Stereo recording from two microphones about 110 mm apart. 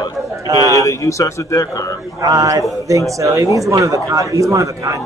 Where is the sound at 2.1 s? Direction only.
30° right (ahead or behind).